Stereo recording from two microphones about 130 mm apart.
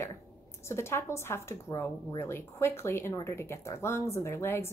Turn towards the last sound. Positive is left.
turn(degrees=20)  # may be behind; listen again after turning